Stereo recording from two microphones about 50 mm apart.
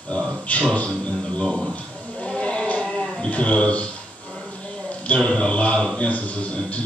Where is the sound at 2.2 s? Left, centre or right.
Left.